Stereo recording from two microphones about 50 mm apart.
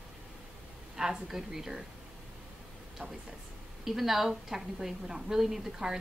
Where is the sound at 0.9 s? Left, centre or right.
Centre.